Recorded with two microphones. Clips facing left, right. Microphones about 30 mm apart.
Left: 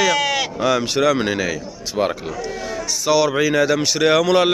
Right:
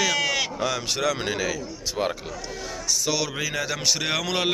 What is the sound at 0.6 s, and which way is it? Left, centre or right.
A man's voice, centre.